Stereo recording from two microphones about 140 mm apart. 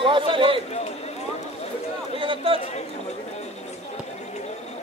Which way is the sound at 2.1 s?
40° right (ahead or behind).